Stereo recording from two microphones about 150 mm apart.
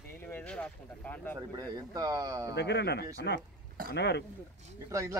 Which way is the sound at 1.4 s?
25° right (ahead or behind).